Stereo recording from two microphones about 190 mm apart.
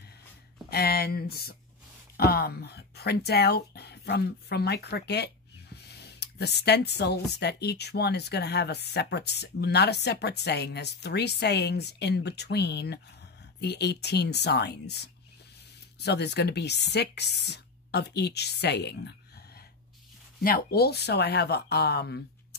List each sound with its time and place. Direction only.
0.7 s speech: 55° left (ahead or behind)
20.4 s speech: 50° left (ahead or behind)